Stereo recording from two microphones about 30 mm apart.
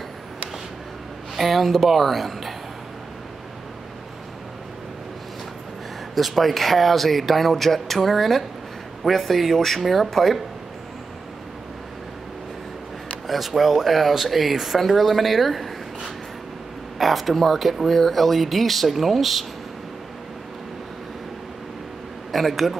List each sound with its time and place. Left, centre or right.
1.3 s speech: centre
6.1 s speech: centre
13.3 s speech: centre
17.0 s speech: centre
22.3 s speech: centre